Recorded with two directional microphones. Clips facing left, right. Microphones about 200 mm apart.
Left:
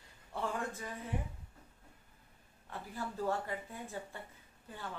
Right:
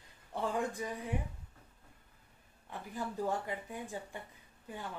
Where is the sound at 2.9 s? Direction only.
15° right (ahead or behind).